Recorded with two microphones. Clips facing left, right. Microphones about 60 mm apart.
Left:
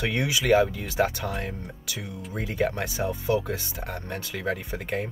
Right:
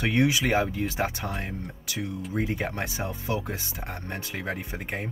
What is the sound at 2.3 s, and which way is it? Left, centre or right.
Speech, right.